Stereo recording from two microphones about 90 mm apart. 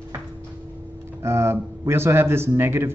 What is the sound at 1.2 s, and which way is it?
Speech, 30° right (ahead or behind).